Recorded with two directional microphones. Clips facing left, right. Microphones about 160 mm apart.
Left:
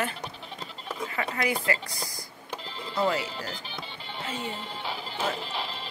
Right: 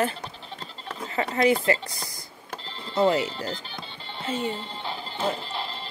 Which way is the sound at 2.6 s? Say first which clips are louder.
Left 1 dB; 10° left (ahead or behind).